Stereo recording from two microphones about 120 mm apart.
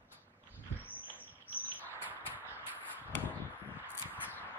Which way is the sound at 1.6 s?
15° left (ahead or behind).